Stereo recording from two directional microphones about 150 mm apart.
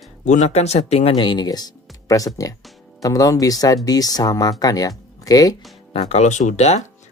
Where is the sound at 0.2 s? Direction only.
50° left (ahead or behind); by 5.6 s 25° left (ahead or behind).